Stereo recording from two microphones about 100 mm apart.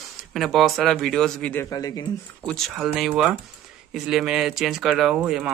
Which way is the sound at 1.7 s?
40° left (ahead or behind).